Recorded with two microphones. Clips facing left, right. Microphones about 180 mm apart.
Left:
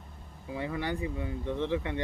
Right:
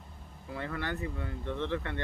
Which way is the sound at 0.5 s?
15° left (ahead or behind).